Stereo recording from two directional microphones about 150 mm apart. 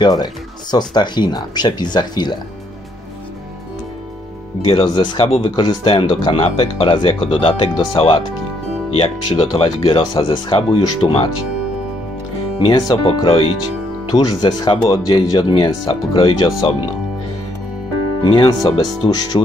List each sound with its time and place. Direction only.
0.0 s speech: 25° left (ahead or behind)
4.6 s speech: 35° left (ahead or behind)
9.6 s speech: 35° left (ahead or behind)
12.5 s speech: 30° left (ahead or behind)
18.2 s speech: 30° left (ahead or behind)